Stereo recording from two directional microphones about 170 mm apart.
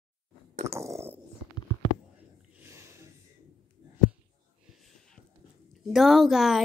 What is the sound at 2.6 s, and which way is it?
Snort, 15° right (ahead or behind).